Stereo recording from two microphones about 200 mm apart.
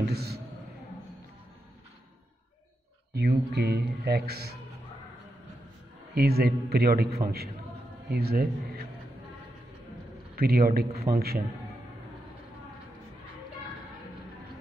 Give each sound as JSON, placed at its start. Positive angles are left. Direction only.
{"t": 0.0, "sound": "speech", "side_deg": -50}
{"t": 3.2, "sound": "speech", "side_deg": -50}
{"t": 6.1, "sound": "speech", "side_deg": -50}
{"t": 10.3, "sound": "speech", "side_deg": -50}